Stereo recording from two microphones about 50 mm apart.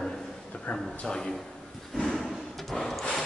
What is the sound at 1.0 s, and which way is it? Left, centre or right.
Speech, centre.